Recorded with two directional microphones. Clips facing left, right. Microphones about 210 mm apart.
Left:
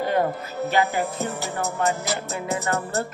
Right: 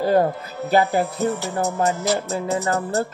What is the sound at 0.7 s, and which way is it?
Music, 35° right (ahead or behind).